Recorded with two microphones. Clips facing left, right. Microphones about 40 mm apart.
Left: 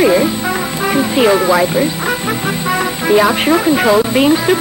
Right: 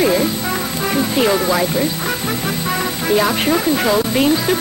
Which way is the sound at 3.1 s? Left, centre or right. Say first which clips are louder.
Left 5 dB; centre.